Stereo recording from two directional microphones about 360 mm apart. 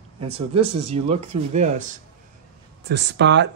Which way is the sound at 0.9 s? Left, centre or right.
Centre.